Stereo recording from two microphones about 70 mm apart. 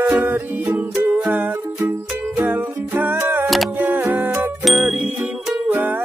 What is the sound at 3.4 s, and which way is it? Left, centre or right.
Music, centre.